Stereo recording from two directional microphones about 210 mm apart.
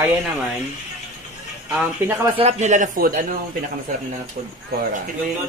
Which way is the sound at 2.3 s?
30° right (ahead or behind).